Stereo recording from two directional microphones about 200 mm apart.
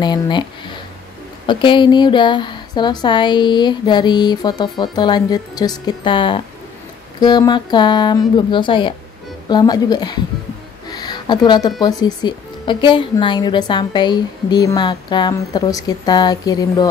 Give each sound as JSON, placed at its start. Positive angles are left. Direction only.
{"t": 0.0, "sound": "speech", "side_deg": 20}
{"t": 10.9, "sound": "a sound", "side_deg": 20}
{"t": 11.8, "sound": "speech", "side_deg": 20}